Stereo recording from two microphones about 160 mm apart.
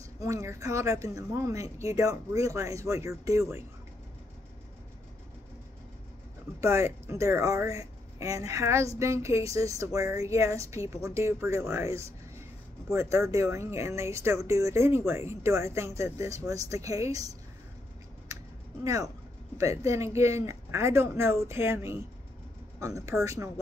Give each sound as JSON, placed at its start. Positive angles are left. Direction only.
{"t": 0.2, "sound": "a woman's voice", "side_deg": -20}
{"t": 6.6, "sound": "a woman's voice", "side_deg": -15}
{"t": 19.5, "sound": "a woman's voice", "side_deg": -20}